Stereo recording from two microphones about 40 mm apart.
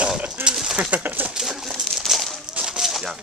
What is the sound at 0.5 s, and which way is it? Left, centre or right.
Speech, centre.